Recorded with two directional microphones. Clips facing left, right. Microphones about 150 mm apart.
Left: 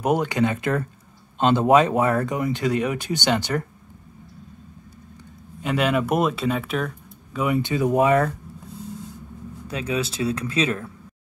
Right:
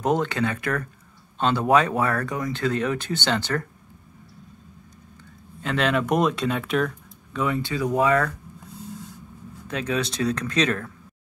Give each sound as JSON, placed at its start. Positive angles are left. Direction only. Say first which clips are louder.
{"t": 0.0, "sound": "speech", "louder": "left 2 dB", "side_deg": 10}
{"t": 5.6, "sound": "speech", "louder": "left 1 dB", "side_deg": 10}
{"t": 7.3, "sound": "speech", "louder": "left 3 dB", "side_deg": 15}
{"t": 9.8, "sound": "speech", "louder": "even", "side_deg": 5}